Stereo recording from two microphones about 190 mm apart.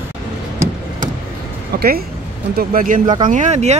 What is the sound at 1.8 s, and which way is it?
Speech, 55° right (ahead or behind).